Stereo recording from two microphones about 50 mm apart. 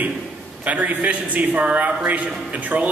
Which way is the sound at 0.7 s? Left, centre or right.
Right.